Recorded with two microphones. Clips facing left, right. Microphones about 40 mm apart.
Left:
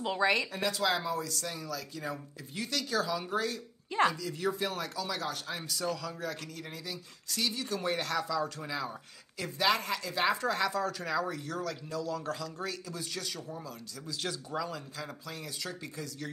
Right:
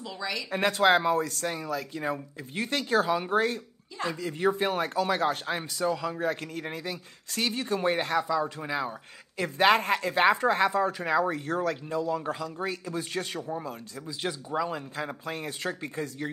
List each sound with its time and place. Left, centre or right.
0.0 s speech: left
0.5 s speech: right
9.4 s speech: right
14.0 s speech: right